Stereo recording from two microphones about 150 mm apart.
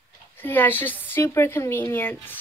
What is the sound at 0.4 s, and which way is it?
A woman's voice, 15° left (ahead or behind).